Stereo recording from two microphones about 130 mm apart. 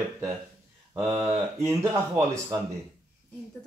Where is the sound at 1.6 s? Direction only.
20° right (ahead or behind).